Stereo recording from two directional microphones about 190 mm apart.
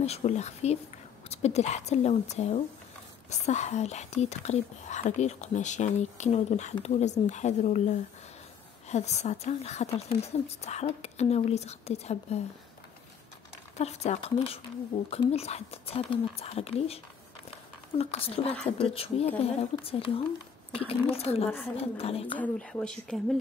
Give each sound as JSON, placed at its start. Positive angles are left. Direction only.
{"t": 0.0, "sound": "speech", "side_deg": 35}
{"t": 13.7, "sound": "speech", "side_deg": 35}
{"t": 22.4, "sound": "speech", "side_deg": 5}